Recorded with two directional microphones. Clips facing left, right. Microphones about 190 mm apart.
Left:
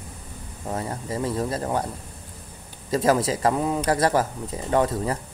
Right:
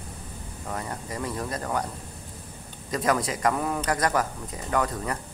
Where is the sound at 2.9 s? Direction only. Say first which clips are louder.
Left 5 dB; 30° left (ahead or behind).